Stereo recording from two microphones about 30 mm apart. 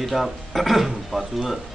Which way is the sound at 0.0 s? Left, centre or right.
Centre.